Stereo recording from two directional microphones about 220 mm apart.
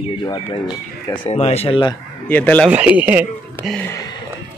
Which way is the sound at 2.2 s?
5° left (ahead or behind).